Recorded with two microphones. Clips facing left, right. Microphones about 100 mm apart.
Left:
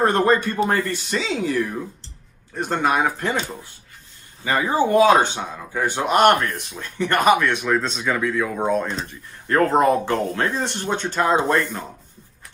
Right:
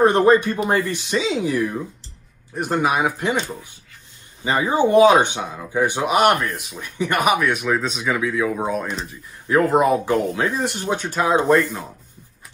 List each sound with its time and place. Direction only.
0.0 s speech: 15° right (ahead or behind)
4.5 s speech: 20° right (ahead or behind); by 11.8 s centre (ahead or behind)